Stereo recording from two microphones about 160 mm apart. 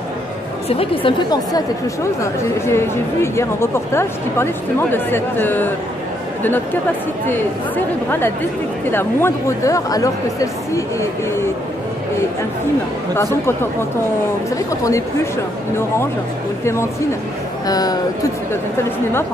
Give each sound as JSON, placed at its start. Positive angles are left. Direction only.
{"t": 0.7, "sound": "a woman's voice", "side_deg": 35}
{"t": 2.6, "sound": "speech", "side_deg": 15}
{"t": 7.2, "sound": "speech", "side_deg": 15}
{"t": 13.1, "sound": "speech", "side_deg": 15}
{"t": 14.7, "sound": "speech", "side_deg": 20}
{"t": 17.6, "sound": "speech", "side_deg": 25}